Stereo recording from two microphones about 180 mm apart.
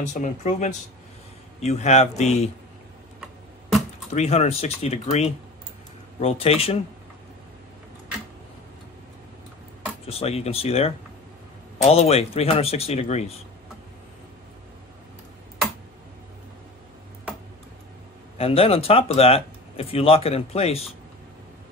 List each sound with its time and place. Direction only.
0.0 s speech: 40° left (ahead or behind)
4.1 s speech: 35° left (ahead or behind)
10.0 s speech: 35° left (ahead or behind)
18.4 s speech: 30° left (ahead or behind)